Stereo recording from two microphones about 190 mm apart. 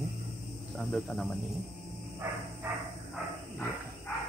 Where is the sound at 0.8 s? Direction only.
5° left (ahead or behind).